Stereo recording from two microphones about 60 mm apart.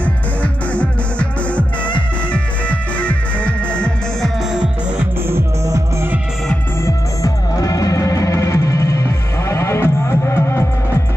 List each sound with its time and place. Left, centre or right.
0.0 s music: left
2.3 s music: left
6.8 s music: left